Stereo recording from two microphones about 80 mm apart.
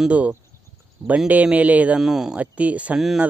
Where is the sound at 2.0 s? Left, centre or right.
Centre.